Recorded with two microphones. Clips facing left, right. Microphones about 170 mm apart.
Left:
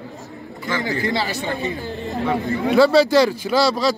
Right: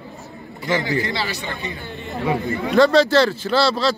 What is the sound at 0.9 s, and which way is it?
Speech, 45° left (ahead or behind).